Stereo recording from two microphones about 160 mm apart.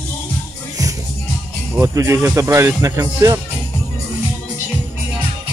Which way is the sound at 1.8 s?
15° right (ahead or behind).